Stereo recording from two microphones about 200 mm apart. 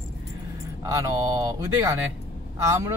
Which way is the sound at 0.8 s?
15° right (ahead or behind).